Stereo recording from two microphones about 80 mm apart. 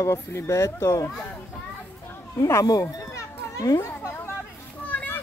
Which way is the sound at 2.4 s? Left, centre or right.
Left.